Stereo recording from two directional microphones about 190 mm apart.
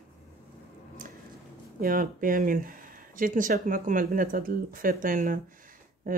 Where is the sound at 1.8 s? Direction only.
45° right (ahead or behind).